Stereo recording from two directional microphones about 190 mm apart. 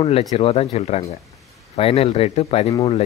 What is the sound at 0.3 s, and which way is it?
Speech, 30° left (ahead or behind).